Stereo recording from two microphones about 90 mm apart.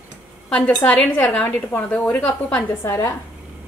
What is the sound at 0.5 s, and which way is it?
A woman's voice, 10° left (ahead or behind).